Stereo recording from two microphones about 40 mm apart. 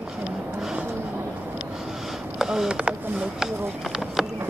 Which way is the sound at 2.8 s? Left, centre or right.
Right.